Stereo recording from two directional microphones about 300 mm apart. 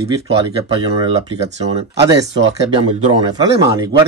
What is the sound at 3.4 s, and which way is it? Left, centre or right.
Speech, centre.